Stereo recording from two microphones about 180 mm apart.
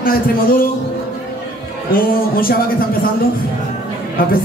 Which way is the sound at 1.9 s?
55° left (ahead or behind).